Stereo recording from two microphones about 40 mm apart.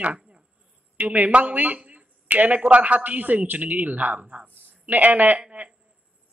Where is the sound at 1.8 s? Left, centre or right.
Right.